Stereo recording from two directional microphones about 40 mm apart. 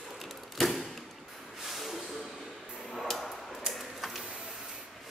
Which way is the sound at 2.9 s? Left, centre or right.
Centre.